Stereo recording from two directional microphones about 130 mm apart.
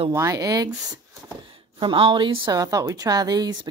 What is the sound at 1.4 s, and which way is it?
A woman's voice, 40° right (ahead or behind).